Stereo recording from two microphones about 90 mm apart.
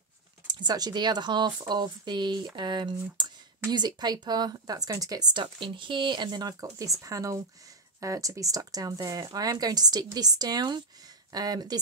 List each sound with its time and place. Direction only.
0.5 s speech: 50° right (ahead or behind)
5.3 s speech: 65° right (ahead or behind); by 11.8 s 45° right (ahead or behind)